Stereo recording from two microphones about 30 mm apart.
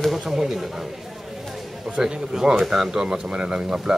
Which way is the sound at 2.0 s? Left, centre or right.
Right.